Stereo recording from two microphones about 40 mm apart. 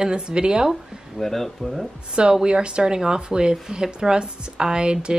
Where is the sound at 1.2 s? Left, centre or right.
Centre.